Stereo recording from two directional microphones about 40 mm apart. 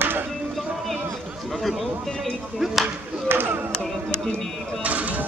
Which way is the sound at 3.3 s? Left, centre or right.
Right.